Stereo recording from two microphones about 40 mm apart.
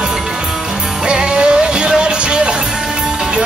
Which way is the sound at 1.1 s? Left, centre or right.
Right.